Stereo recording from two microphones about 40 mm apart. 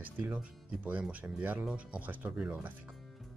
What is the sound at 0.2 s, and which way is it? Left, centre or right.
Speech, right.